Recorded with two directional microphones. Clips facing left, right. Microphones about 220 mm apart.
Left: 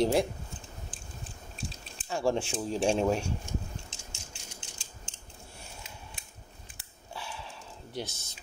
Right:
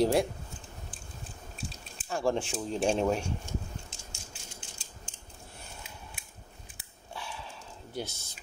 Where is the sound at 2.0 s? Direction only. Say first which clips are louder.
Left 1 dB; centre (ahead or behind).